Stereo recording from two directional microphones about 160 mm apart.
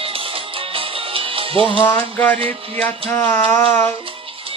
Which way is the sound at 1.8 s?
10° left (ahead or behind).